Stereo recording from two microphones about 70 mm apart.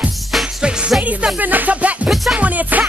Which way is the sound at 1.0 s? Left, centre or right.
Right.